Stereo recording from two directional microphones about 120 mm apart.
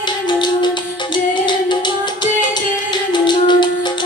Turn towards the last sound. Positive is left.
turn(degrees=40)  # may be behind; listen again after turning